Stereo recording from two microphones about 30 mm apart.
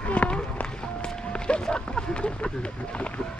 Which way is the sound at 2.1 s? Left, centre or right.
Left.